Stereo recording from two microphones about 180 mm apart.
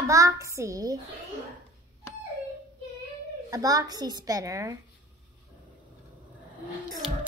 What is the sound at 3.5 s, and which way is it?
A child's voice, 20° right (ahead or behind).